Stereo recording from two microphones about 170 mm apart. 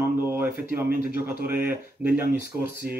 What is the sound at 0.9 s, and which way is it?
Speech, 65° left (ahead or behind).